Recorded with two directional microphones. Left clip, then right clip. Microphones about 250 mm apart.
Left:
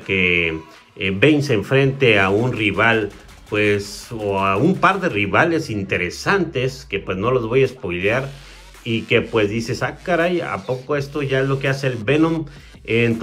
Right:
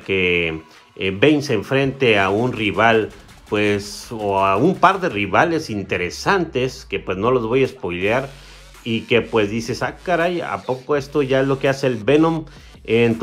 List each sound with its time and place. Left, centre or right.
0.0 s speech: centre